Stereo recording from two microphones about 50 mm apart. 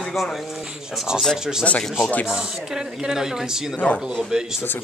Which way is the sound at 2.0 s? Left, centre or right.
Left.